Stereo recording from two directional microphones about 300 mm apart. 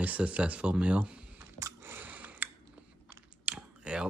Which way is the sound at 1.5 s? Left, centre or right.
Centre.